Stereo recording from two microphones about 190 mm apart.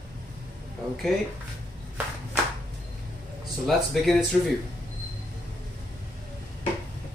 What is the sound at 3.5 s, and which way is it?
Speech, centre (ahead or behind).